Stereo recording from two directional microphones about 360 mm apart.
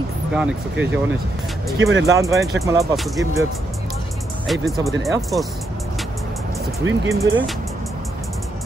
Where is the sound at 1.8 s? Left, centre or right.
Right.